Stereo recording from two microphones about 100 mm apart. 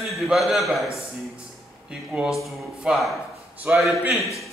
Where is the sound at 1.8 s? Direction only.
10° right (ahead or behind).